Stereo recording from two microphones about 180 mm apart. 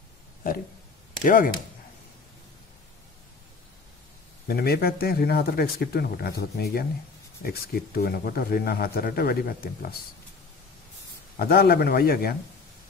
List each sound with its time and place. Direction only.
1.2 s speech: 50° left (ahead or behind)
4.5 s speech: 55° left (ahead or behind)
11.3 s speech: 55° left (ahead or behind)